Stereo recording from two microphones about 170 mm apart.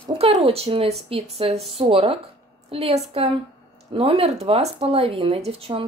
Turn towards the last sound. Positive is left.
turn(degrees=-35)  # may be behind; listen again after turning